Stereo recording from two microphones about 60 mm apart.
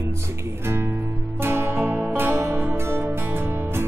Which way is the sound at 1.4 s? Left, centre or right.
Right.